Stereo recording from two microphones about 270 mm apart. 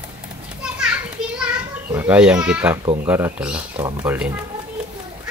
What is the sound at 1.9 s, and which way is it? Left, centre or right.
Speech, centre.